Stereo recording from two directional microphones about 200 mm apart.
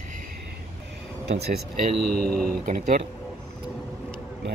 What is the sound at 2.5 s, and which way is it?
Speech, 45° right (ahead or behind).